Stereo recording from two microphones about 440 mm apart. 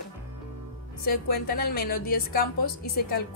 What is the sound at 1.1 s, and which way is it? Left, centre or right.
A woman's voice, left.